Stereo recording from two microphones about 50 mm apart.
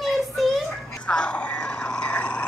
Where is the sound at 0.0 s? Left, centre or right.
Centre.